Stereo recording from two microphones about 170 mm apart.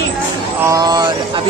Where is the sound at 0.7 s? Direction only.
25° right (ahead or behind).